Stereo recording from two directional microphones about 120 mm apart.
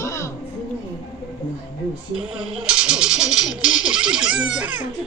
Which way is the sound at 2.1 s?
5° right (ahead or behind).